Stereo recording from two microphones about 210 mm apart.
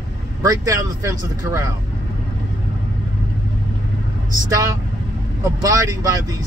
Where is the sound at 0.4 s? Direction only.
15° right (ahead or behind).